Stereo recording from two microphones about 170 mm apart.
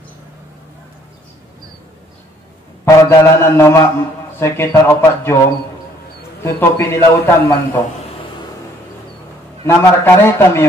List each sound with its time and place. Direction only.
2.8 s a man's voice: 15° left (ahead or behind)
6.4 s a man's voice: 15° left (ahead or behind)
9.7 s a man's voice: 15° left (ahead or behind)